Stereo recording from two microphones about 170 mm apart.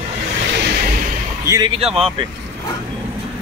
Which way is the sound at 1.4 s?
20° right (ahead or behind).